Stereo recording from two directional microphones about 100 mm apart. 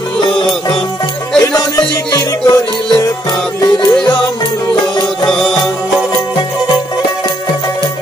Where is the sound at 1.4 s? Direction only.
40° left (ahead or behind).